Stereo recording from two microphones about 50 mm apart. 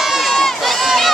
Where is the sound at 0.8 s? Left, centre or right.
Centre.